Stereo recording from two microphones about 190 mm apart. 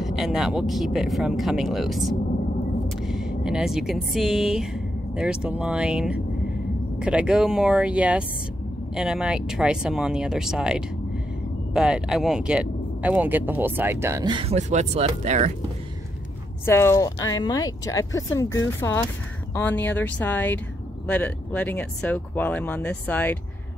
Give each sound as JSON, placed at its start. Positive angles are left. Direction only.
{"t": 0.0, "sound": "speech", "side_deg": 0}
{"t": 16.6, "sound": "speech", "side_deg": 15}